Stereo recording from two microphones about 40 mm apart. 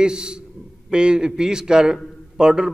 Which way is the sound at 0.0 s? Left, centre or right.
Centre.